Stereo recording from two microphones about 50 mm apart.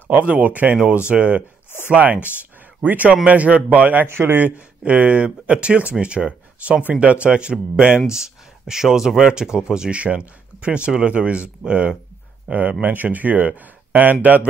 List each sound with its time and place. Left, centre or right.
0.1 s speech: right
2.2 s a sound: right
2.9 s speech: right
4.0 s a man's voice: right
4.5 s speech: right
12.8 s speech: right